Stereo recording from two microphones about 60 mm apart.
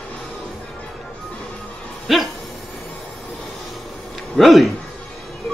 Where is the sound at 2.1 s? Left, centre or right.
Centre.